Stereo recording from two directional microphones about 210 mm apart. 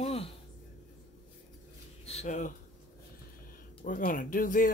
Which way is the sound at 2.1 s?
35° left (ahead or behind).